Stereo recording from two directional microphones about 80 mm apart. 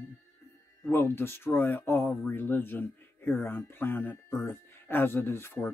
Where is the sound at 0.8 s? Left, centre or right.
Left.